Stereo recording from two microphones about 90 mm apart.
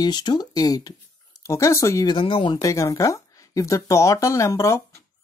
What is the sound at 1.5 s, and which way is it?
Speech, 35° left (ahead or behind).